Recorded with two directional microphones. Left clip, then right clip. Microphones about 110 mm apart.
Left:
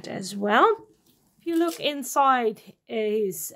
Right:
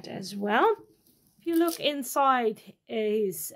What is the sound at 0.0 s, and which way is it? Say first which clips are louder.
Speech: left 5 dB; 40° left (ahead or behind).